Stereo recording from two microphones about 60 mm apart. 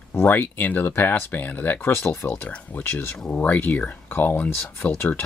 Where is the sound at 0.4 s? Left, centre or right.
Left.